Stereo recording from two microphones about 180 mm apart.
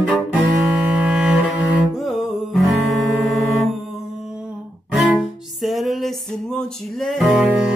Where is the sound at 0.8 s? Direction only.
5° right (ahead or behind).